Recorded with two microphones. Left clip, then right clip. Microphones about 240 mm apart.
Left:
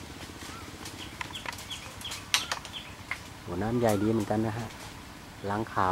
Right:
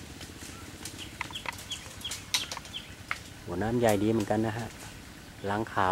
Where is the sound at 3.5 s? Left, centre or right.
Centre.